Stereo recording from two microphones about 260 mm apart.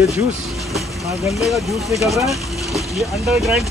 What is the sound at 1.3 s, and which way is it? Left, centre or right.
Speech, centre.